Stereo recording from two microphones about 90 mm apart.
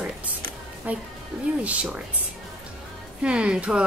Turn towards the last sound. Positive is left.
turn(degrees=-10)  # may be behind; listen again after turning